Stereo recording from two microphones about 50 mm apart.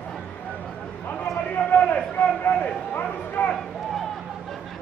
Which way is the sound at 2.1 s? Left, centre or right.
Left.